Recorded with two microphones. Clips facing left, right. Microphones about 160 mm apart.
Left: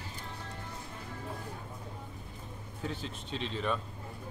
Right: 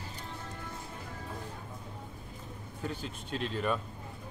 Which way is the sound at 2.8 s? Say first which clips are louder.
Even; centre (ahead or behind).